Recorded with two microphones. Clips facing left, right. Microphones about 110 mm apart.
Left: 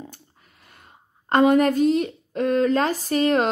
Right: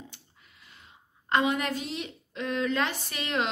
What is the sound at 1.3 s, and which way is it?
Speech, 45° left (ahead or behind).